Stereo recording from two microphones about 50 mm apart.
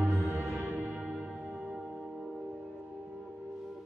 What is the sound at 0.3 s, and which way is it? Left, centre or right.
Music, right.